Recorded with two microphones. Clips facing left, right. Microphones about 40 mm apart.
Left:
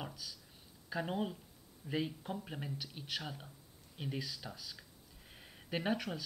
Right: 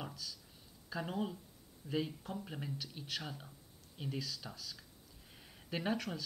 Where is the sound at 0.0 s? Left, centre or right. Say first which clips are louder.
Even; centre.